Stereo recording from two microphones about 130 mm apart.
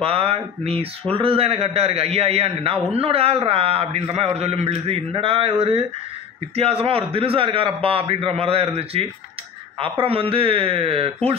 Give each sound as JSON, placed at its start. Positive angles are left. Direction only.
{"t": 0.0, "sound": "a man's voice", "side_deg": -50}